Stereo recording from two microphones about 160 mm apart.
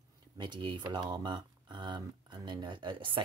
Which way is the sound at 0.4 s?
30° right (ahead or behind).